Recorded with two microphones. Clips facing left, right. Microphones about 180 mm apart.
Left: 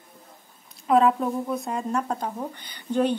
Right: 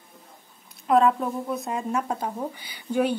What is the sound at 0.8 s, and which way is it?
A woman's voice, centre (ahead or behind).